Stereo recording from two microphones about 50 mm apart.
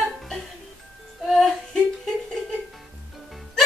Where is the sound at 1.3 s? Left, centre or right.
Centre.